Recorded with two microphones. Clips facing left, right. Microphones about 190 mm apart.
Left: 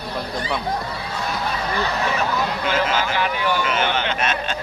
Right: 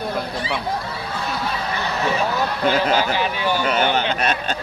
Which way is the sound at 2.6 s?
40° right (ahead or behind).